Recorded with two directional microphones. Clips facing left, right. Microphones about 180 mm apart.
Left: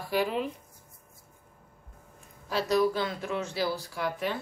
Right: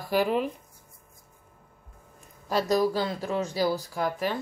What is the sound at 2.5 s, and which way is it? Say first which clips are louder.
Speech: right 2 dB; 40° right (ahead or behind).